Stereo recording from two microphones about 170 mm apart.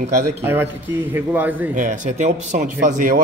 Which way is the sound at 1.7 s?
50° right (ahead or behind).